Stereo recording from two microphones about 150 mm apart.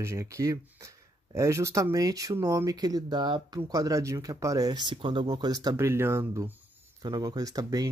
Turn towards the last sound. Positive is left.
turn(degrees=-25)  # may be behind; listen again after turning